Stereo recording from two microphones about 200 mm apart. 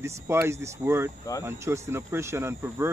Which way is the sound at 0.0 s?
15° right (ahead or behind).